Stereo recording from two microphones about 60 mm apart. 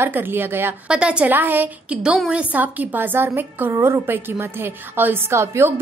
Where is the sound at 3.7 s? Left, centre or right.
Right.